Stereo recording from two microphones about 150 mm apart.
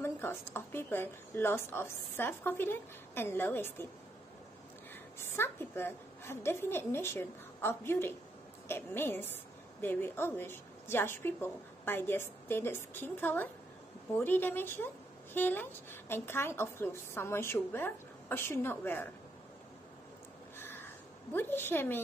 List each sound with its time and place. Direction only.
0.0 s a woman's voice: 15° left (ahead or behind)
5.3 s a woman's voice: 15° left (ahead or behind)
20.5 s a sound: 15° left (ahead or behind)